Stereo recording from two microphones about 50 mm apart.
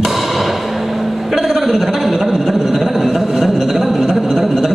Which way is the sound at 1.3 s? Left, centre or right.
Centre.